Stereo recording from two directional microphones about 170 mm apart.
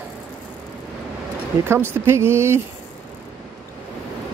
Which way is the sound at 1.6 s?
15° right (ahead or behind).